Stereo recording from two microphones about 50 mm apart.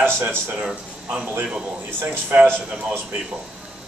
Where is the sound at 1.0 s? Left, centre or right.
Right.